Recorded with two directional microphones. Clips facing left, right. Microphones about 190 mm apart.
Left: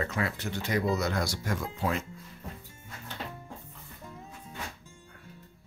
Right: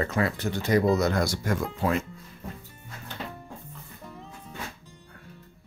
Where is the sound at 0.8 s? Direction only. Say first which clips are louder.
Right 6 dB; 55° right (ahead or behind).